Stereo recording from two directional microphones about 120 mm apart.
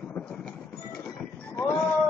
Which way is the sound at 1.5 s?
25° left (ahead or behind).